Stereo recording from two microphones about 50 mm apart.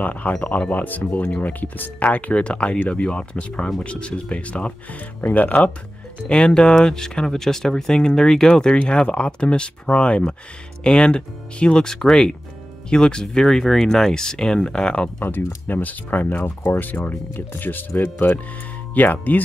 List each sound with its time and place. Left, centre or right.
0.0 s speech: left
6.2 s speech: centre
15.1 s speech: left